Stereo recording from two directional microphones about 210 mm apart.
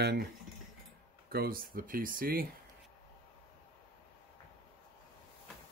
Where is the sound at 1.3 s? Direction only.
45° right (ahead or behind).